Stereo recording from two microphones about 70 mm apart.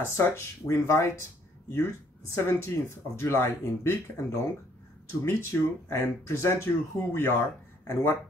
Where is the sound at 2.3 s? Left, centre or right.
Left.